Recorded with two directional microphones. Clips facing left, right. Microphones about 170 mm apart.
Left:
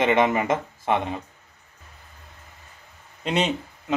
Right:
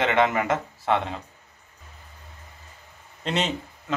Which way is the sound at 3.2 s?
15° left (ahead or behind).